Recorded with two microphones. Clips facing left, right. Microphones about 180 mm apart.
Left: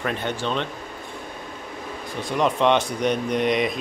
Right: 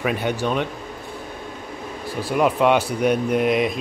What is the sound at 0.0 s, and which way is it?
Speech, 10° right (ahead or behind).